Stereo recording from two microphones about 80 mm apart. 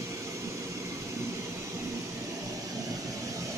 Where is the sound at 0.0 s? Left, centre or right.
Right.